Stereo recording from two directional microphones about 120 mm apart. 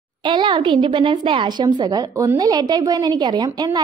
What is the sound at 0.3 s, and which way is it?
A child's voice, 40° right (ahead or behind).